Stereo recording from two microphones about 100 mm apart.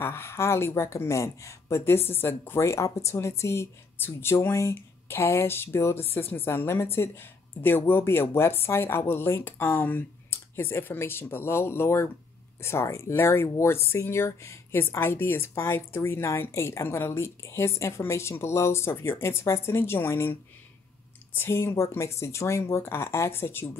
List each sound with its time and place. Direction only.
0.0 s speech: 25° left (ahead or behind)